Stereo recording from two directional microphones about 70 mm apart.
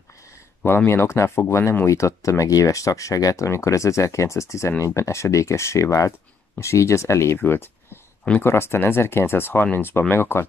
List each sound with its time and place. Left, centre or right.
0.7 s speech: left
3.4 s speech: left
7.3 s speech: left